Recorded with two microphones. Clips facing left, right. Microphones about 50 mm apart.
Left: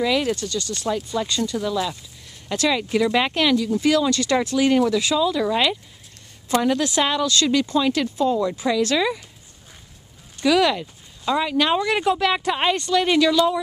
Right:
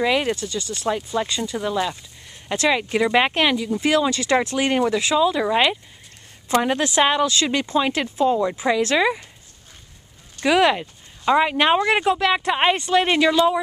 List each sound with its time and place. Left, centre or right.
0.0 s speech: centre
10.4 s speech: right
12.0 s speech: centre
12.5 s speech: right